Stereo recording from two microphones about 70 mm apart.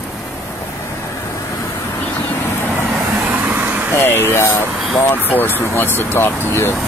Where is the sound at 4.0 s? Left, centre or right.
Left.